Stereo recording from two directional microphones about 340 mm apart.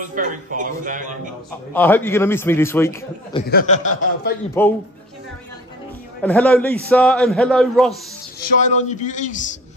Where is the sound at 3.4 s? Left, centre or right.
Left.